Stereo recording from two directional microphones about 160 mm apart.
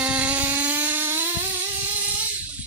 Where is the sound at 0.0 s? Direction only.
5° right (ahead or behind).